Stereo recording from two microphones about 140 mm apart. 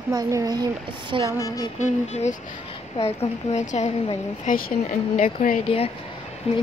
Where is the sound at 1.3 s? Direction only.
25° left (ahead or behind).